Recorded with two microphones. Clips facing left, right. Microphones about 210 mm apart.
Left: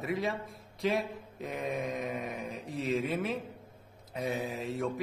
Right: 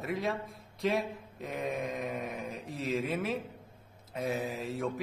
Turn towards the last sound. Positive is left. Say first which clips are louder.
# even
turn(degrees=0)  # may be behind; listen again after turning